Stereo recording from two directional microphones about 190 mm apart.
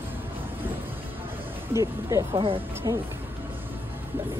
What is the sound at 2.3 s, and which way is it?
Speech, 25° right (ahead or behind).